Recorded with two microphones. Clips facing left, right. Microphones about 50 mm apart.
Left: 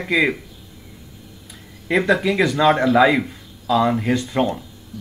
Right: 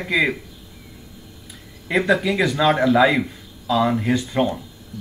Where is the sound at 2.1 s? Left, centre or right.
Centre.